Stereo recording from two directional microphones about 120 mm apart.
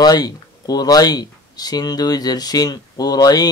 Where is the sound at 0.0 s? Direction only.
35° left (ahead or behind).